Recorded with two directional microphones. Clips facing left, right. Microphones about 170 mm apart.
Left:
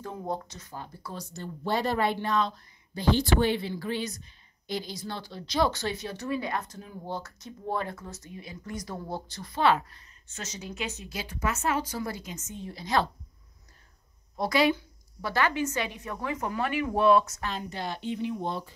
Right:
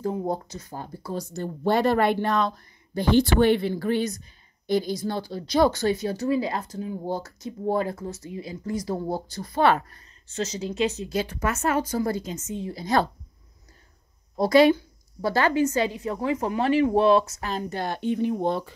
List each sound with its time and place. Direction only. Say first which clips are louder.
0.0 s a woman's voice: right 7 dB; 30° right (ahead or behind)
6.0 s speech: right 7 dB; 30° right (ahead or behind)
7.1 s speech: right 6 dB; 35° right (ahead or behind)
9.7 s a woman's voice: even; 50° right (ahead or behind)
10.2 s speech: right 11 dB; 30° right (ahead or behind)
11.1 s a woman's voice: right 3 dB; 55° right (ahead or behind)
14.3 s speech: right 8 dB; 35° right (ahead or behind)
16.0 s speech: right 7 dB; 25° right (ahead or behind); by 18.7 s 60° right (ahead or behind)